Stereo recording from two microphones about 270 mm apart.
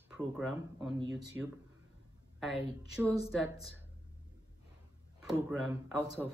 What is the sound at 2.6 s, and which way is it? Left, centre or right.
Speech, left.